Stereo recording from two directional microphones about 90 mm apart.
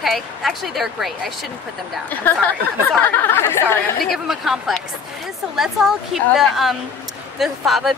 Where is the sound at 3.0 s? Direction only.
25° left (ahead or behind).